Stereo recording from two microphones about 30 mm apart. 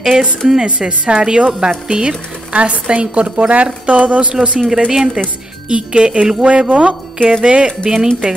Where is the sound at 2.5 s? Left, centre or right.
Right.